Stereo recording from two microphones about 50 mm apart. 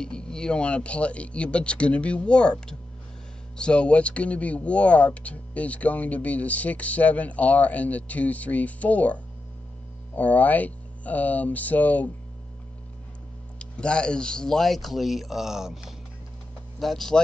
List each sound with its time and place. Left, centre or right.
0.0 s speech: centre; by 12.1 s left
13.6 s speech: centre
16.8 s speech: centre